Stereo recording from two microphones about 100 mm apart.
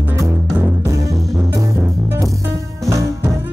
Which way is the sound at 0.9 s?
35° right (ahead or behind).